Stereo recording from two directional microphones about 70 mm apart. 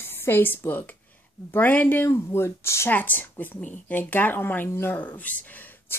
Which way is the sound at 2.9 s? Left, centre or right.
Left.